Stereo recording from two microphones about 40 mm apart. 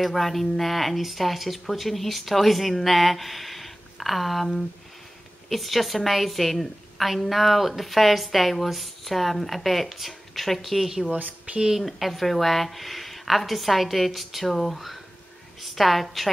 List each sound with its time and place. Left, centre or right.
0.0 s a woman's voice: centre
11.1 s speech: right
11.7 s a woman's voice: centre